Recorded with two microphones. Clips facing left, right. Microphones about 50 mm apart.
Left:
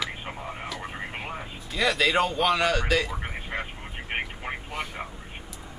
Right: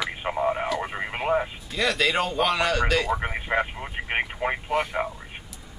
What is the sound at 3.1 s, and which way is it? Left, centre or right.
Speech, right.